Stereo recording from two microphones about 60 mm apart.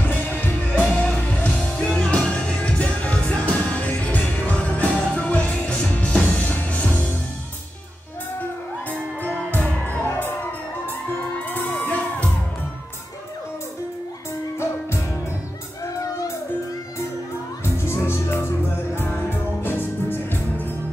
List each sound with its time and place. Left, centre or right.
0.0 s music: left
9.5 s music: left
11.5 s music: left
17.8 s music: left